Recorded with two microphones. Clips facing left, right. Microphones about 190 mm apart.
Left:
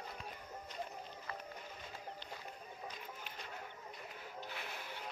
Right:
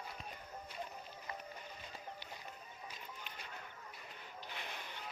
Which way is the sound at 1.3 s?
15° right (ahead or behind).